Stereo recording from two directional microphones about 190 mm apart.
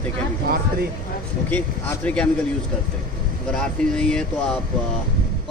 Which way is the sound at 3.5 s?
5° left (ahead or behind).